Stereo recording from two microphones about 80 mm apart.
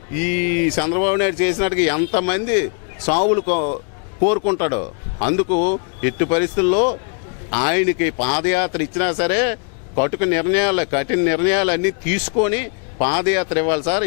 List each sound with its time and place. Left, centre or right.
0.1 s speech: centre